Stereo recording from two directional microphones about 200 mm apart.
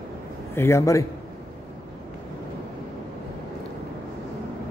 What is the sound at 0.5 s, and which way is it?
Speech, 15° left (ahead or behind).